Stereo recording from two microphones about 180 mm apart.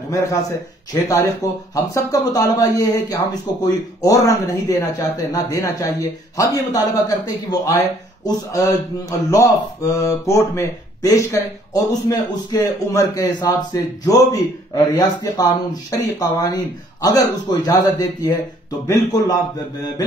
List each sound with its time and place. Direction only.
0.1 s a man's voice: 15° left (ahead or behind)
9.3 s a man's voice: 15° left (ahead or behind)